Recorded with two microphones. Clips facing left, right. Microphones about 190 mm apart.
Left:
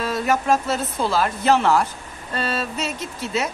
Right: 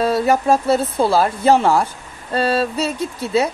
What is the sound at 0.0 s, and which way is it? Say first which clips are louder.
Speech: right 6 dB; 30° right (ahead or behind).